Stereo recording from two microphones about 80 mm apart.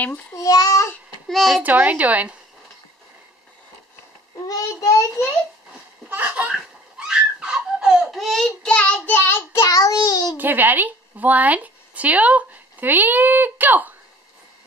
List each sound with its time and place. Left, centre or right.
0.4 s a child's voice: left
1.3 s a child's voice: centre
1.6 s a child's voice: centre
4.5 s a child's voice: left
6.0 s a child's voice: right
6.5 s laughter: centre
8.6 s child singing: centre; by 9.7 s left
9.7 s a child's voice: left
10.3 s speech: right